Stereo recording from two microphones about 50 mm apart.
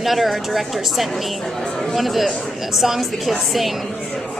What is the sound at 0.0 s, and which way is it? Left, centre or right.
Speech, centre.